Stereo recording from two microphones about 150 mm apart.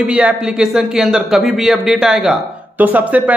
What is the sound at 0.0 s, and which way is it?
A man's voice, 5° right (ahead or behind).